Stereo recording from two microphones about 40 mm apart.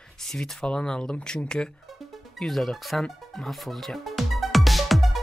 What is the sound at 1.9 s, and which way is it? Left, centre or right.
Music, centre.